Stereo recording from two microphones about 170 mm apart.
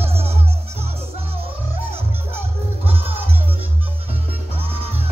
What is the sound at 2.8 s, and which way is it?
Music, 35° right (ahead or behind).